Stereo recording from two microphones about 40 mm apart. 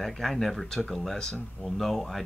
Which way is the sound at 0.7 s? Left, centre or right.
Centre.